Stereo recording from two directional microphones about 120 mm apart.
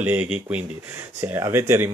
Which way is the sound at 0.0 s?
15° right (ahead or behind).